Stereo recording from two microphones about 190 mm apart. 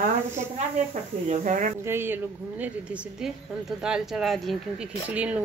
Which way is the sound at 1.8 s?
10° right (ahead or behind).